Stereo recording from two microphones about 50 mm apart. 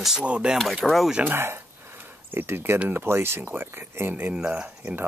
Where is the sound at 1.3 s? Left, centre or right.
Right.